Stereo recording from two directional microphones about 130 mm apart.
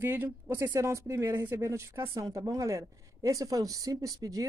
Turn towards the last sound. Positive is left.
turn(degrees=-25)  # may be behind; listen again after turning